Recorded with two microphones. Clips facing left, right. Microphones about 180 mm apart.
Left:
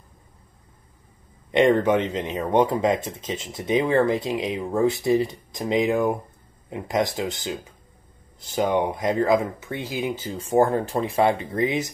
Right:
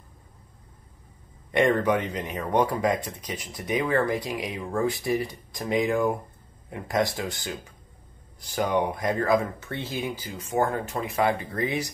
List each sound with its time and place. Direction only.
1.5 s speech: 20° left (ahead or behind)